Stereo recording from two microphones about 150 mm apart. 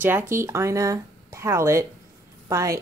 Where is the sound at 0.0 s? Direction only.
15° right (ahead or behind).